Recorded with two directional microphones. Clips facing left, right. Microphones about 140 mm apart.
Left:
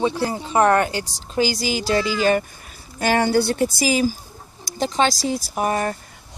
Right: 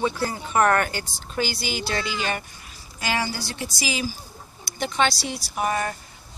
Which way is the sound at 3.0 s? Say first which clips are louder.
Left 9 dB; 55° left (ahead or behind).